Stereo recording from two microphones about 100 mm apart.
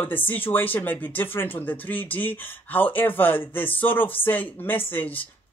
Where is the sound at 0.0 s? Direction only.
20° left (ahead or behind).